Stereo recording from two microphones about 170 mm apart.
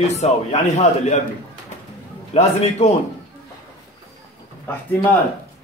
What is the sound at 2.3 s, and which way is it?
Speech, 40° left (ahead or behind).